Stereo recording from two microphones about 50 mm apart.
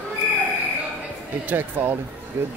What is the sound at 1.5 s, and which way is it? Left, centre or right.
Speech, right.